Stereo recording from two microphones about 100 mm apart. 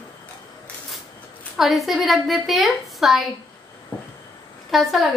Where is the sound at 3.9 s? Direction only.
20° left (ahead or behind).